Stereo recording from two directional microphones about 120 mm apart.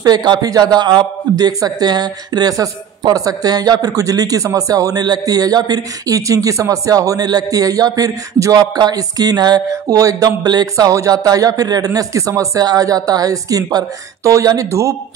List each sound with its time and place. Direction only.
0.0 s speech: 35° right (ahead or behind)